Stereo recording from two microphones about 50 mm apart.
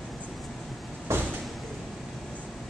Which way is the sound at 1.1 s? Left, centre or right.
Right.